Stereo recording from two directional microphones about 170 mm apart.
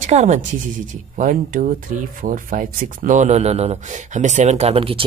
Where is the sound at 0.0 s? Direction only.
45° right (ahead or behind).